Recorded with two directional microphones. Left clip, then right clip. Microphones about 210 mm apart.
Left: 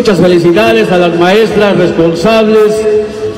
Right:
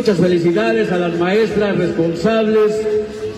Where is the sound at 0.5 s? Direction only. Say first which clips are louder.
Left 9 dB; 30° right (ahead or behind).